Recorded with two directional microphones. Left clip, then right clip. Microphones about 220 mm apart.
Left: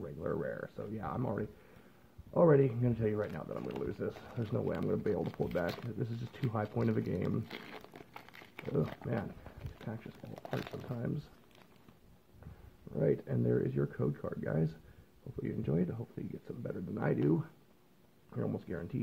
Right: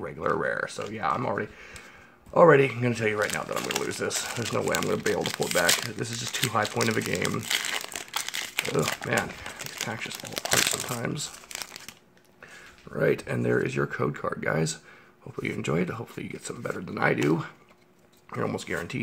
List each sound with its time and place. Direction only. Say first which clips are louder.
0.0 s speech: right 11 dB; 20° right (ahead or behind)
12.9 s speech: right 8 dB; 10° right (ahead or behind)
18.3 s speech: right 10 dB; 15° right (ahead or behind)